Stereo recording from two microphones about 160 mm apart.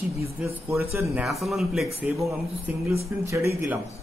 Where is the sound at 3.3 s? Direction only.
15° right (ahead or behind).